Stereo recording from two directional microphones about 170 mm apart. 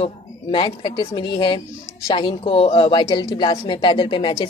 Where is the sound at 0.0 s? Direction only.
30° left (ahead or behind).